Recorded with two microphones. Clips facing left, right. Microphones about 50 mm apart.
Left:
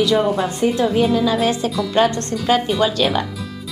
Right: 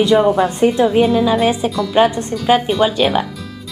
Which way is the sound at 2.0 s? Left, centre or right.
Centre.